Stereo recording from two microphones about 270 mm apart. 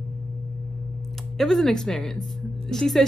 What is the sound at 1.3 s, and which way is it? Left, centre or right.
Speech, centre.